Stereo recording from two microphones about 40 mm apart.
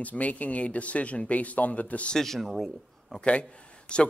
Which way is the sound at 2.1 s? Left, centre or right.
Centre.